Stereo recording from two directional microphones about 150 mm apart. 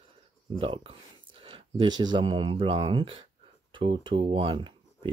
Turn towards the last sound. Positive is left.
turn(degrees=-35)  # may be behind; listen again after turning